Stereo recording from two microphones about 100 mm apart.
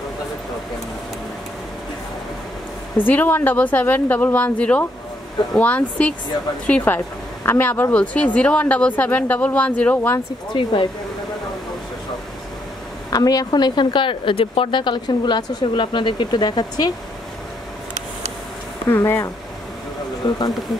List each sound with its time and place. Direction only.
3.1 s speech: 20° left (ahead or behind)
10.5 s speech: 55° left (ahead or behind)
13.1 s a woman's voice: 40° left (ahead or behind)
18.9 s speech: 25° left (ahead or behind)
20.2 s a woman's voice: 45° left (ahead or behind)